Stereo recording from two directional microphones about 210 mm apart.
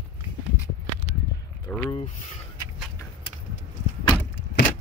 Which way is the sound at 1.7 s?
10° left (ahead or behind).